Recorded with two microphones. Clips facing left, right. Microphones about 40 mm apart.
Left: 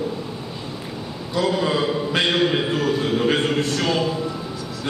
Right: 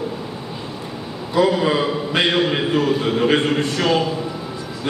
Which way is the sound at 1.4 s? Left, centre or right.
Centre.